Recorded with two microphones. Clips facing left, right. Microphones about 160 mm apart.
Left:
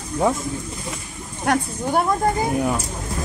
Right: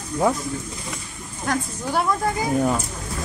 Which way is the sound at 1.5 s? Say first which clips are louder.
Left 4 dB; 50° left (ahead or behind).